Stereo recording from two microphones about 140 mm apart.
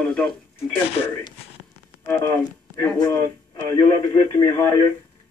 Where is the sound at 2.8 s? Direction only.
20° left (ahead or behind).